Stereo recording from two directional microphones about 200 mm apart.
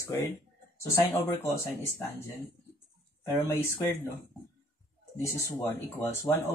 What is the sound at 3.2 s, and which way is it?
Speech, 15° left (ahead or behind).